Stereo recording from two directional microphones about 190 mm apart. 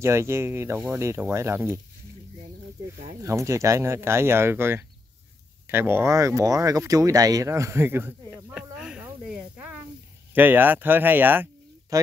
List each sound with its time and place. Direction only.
0.0 s speech: 15° right (ahead or behind)
3.2 s a woman's voice: 15° right (ahead or behind)